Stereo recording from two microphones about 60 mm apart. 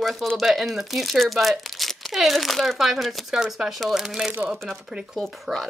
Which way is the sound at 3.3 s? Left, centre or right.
Centre.